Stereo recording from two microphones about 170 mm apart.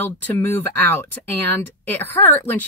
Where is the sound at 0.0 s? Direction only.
10° left (ahead or behind).